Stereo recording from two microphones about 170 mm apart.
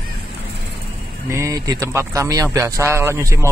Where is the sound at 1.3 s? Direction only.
20° right (ahead or behind).